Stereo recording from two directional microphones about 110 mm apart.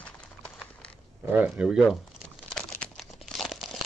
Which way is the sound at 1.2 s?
15° right (ahead or behind).